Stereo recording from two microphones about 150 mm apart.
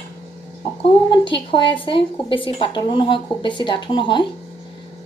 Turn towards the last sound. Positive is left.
turn(degrees=35)  # may be behind; listen again after turning